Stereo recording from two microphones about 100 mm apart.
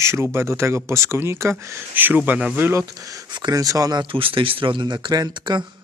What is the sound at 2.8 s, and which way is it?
Speech, 35° right (ahead or behind).